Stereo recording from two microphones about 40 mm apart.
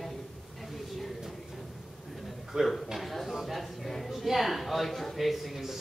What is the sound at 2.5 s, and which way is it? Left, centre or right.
Speech, centre.